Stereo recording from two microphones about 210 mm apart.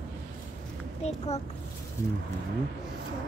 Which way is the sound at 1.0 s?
30° left (ahead or behind).